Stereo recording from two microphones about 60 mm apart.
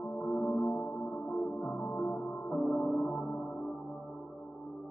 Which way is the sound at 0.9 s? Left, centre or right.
Left.